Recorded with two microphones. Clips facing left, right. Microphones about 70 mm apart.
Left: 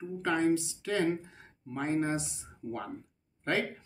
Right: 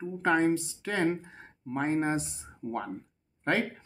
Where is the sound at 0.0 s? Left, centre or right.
Right.